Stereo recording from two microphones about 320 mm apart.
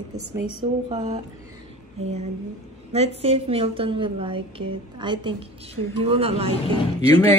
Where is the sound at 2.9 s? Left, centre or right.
Centre.